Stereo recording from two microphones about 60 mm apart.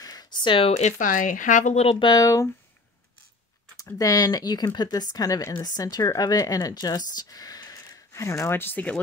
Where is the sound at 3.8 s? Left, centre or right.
Left.